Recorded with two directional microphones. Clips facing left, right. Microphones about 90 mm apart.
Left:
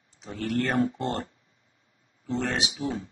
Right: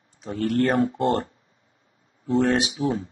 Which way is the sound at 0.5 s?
60° right (ahead or behind).